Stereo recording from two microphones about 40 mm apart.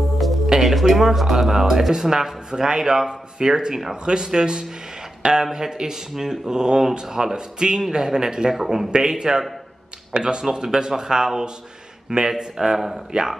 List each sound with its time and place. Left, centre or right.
0.5 s speech: centre
9.3 s speech: centre